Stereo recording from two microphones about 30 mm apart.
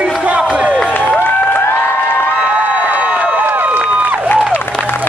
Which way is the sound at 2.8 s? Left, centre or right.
Right.